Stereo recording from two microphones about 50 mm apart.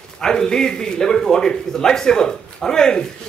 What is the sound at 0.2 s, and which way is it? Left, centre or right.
Speech, centre.